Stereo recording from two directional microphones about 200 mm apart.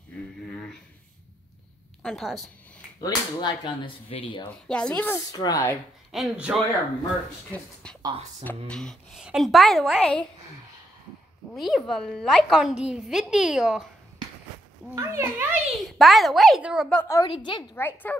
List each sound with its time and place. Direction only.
0.1 s a sound: 5° left (ahead or behind)
2.0 s a woman's voice: centre (ahead or behind)
3.0 s speech: 20° left (ahead or behind)
4.5 s speech: 5° left (ahead or behind)
6.1 s a woman's voice: 5° right (ahead or behind)
8.0 s speech: 25° right (ahead or behind)
8.6 s a woman's voice: centre (ahead or behind)
11.5 s a woman's voice: centre (ahead or behind)
15.0 s a child's voice: 15° right (ahead or behind)
15.3 s a woman's voice: 5° right (ahead or behind)
17.0 s speech: 15° left (ahead or behind)
17.7 s speech: 10° left (ahead or behind)